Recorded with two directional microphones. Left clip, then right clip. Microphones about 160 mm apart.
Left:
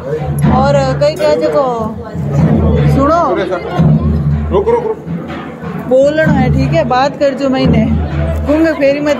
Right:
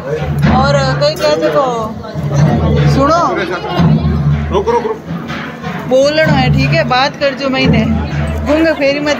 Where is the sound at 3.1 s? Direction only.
25° left (ahead or behind).